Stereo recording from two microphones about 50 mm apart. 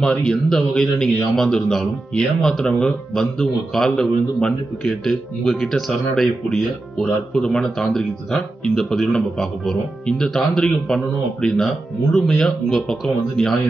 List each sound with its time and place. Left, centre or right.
0.3 s a man's voice: centre
7.0 s speech: left
7.9 s a man's voice: centre